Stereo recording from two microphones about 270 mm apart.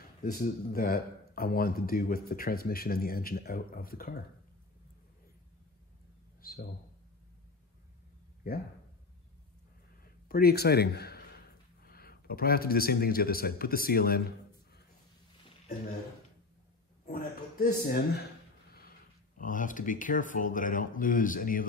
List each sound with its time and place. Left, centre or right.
0.2 s speech: left
6.4 s a man's voice: left
10.0 s a man's voice: left
17.0 s speech: left
19.3 s speech: left